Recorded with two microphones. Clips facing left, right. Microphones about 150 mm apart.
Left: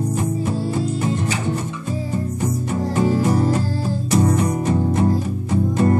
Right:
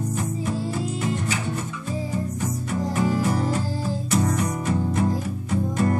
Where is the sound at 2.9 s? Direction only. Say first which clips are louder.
Left 5 dB; 35° left (ahead or behind).